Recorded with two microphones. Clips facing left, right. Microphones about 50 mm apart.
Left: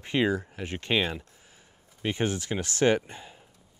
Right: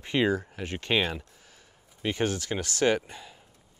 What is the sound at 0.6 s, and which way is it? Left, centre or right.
Speech, left.